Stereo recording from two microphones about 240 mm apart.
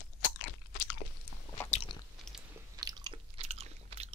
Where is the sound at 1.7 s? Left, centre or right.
Left.